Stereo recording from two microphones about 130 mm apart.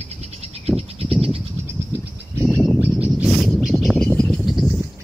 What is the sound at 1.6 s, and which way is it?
Bird, 20° right (ahead or behind).